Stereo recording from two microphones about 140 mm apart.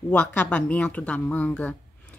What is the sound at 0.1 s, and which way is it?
Speech, 10° left (ahead or behind).